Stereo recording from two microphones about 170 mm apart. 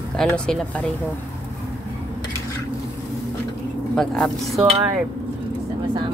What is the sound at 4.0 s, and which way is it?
Speech, centre (ahead or behind).